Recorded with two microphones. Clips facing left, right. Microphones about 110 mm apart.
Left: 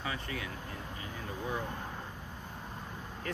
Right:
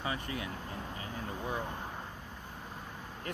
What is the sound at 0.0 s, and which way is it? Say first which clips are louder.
Speech: right 1 dB; 30° right (ahead or behind).